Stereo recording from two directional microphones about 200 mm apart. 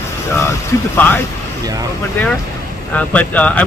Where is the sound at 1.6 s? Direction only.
20° right (ahead or behind).